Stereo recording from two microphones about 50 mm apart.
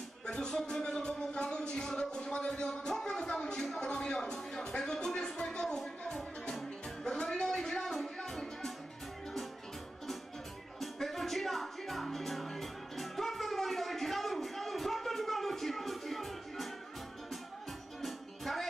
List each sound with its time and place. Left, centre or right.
0.3 s music: centre
7.6 s music: centre
10.8 s music: centre
18.0 s music: centre